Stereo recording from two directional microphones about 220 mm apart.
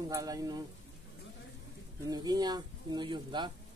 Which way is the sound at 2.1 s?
20° right (ahead or behind).